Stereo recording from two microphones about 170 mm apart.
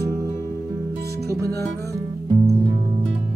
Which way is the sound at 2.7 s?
25° right (ahead or behind).